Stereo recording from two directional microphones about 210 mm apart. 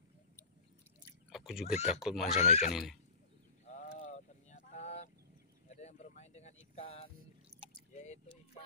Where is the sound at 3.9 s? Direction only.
35° left (ahead or behind).